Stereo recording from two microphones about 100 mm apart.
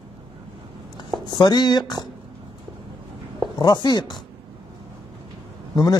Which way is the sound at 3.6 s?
45° left (ahead or behind).